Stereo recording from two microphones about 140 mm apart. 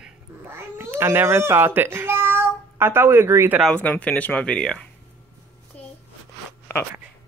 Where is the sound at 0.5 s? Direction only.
15° right (ahead or behind).